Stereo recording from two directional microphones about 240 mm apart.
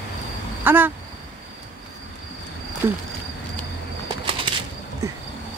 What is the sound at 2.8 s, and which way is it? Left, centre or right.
Speech, centre.